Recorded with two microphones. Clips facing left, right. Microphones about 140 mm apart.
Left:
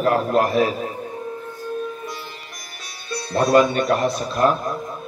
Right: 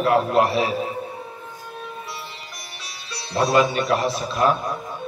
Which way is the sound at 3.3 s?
50° left (ahead or behind).